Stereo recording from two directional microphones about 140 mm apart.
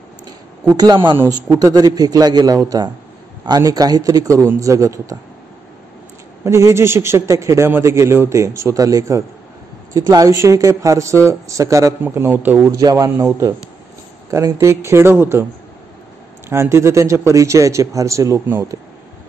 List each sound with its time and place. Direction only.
0.7 s a man's voice: 30° right (ahead or behind)
6.4 s a man's voice: 20° right (ahead or behind)
12.7 s a man's voice: 25° right (ahead or behind)
16.4 s a man's voice: 20° right (ahead or behind)